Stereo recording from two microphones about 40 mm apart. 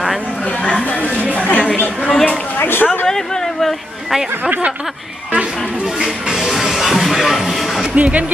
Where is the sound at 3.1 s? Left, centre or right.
Centre.